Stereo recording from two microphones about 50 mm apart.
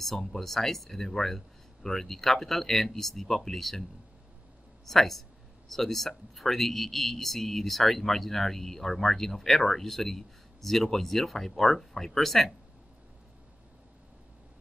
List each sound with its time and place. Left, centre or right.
0.0 s speech: centre
4.8 s speech: centre